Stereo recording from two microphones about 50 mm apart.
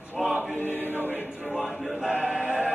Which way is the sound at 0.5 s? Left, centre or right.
Left.